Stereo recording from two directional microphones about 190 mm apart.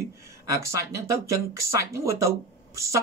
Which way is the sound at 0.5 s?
15° right (ahead or behind).